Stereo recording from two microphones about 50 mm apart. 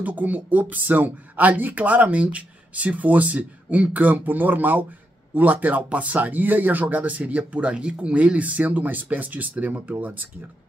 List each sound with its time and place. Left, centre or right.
0.0 s speech: right
7.7 s speech: centre; by 10.2 s right